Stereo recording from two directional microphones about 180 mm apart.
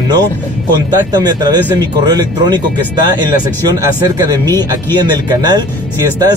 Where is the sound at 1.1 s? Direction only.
20° right (ahead or behind).